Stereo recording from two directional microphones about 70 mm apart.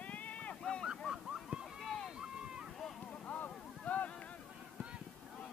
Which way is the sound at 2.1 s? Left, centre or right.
Centre.